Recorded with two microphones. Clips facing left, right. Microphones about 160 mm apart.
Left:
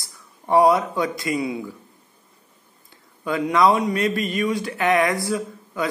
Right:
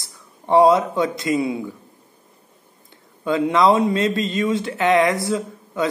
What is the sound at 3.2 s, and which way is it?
Speech, 25° right (ahead or behind).